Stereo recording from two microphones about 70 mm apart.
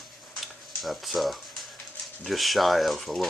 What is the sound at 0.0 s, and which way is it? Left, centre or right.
Dishes, centre.